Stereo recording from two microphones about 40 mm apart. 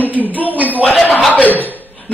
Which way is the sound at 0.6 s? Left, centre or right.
Left.